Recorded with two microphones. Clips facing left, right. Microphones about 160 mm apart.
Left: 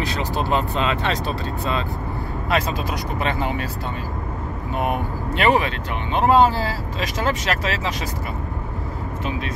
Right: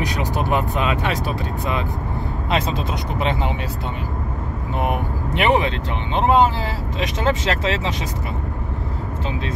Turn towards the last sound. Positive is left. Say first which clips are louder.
# right 2 dB
turn(degrees=-25)  # may be behind; listen again after turning